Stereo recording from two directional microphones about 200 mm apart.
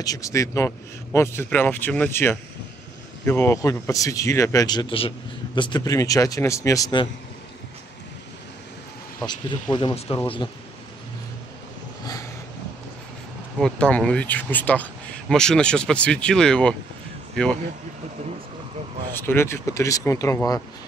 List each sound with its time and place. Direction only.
0.0 s speech: 15° left (ahead or behind)
9.2 s speech: 20° left (ahead or behind)
13.6 s speech: 5° left (ahead or behind)
19.1 s speech: 10° left (ahead or behind)